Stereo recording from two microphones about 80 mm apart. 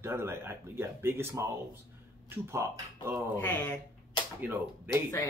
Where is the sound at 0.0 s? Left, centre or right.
Right.